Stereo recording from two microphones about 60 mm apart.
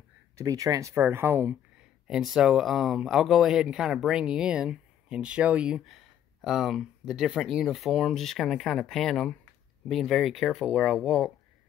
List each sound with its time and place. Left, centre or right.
0.4 s speech: right
1.0 s speech: right
2.0 s speech: centre
5.9 s speech: centre
9.8 s speech: centre